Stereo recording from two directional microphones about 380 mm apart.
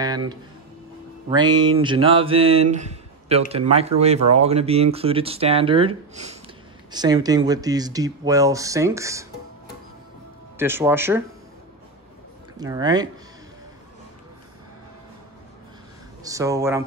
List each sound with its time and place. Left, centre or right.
0.0 s speech: centre
10.6 s speech: centre
12.5 s speech: centre
16.3 s speech: centre